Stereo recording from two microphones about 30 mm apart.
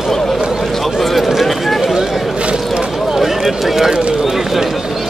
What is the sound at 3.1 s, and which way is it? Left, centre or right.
Run, centre.